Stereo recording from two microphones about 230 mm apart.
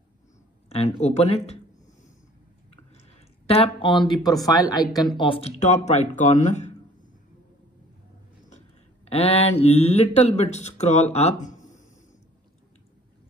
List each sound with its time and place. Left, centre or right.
0.7 s speech: left
2.9 s speech: left
8.5 s mantra: left
10.1 s speech: left